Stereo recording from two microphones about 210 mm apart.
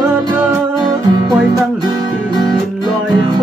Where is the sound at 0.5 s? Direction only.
20° right (ahead or behind).